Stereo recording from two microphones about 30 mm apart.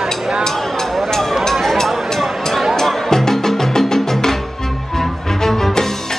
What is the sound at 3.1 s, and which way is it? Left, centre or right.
Music, centre.